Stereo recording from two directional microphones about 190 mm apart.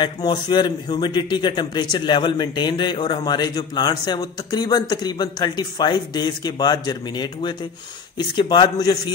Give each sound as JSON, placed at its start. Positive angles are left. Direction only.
{"t": 0.0, "sound": "a man's voice", "side_deg": 20}